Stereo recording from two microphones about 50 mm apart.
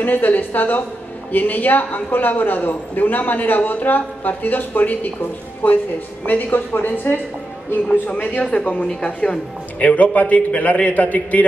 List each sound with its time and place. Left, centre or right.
0.0 s a man's voice: left